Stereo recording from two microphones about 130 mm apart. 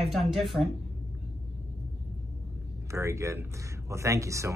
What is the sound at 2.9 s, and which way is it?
Speech, 25° right (ahead or behind).